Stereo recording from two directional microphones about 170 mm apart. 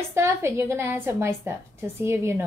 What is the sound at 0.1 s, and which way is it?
A woman's voice, 15° right (ahead or behind).